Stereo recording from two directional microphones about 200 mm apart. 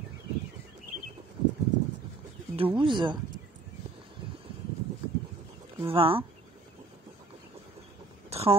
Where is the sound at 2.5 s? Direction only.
25° right (ahead or behind).